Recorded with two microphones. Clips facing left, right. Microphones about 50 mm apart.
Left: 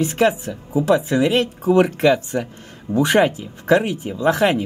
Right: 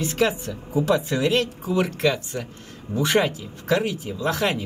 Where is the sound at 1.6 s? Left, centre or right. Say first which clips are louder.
Left 8 dB; left.